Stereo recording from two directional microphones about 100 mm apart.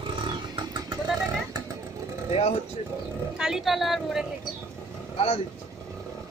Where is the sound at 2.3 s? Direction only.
90° left.